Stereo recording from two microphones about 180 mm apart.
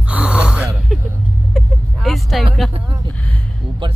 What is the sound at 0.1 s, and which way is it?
Gasp, 5° right (ahead or behind).